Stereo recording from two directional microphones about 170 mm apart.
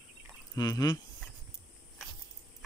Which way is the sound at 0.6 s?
20° left (ahead or behind).